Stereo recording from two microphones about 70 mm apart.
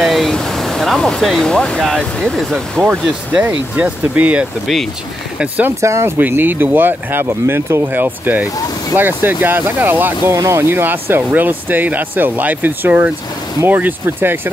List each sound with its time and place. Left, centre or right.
0.0 s speech: centre
2.8 s speech: right
3.4 s speech: centre
5.8 s speech: right
6.1 s speech: right
10.3 s speech: right
10.7 s speech: right